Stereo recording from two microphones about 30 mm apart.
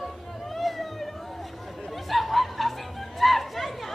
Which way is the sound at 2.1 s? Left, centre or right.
Centre.